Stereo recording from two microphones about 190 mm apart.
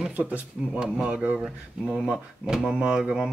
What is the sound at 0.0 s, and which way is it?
Speech, 10° right (ahead or behind).